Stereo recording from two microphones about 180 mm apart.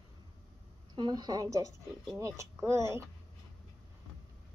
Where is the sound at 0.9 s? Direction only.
25° right (ahead or behind).